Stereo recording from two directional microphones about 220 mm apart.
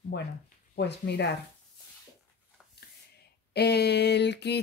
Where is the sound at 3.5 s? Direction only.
50° left (ahead or behind).